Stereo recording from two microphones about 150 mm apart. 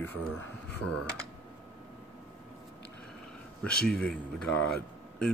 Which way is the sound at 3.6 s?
5° left (ahead or behind).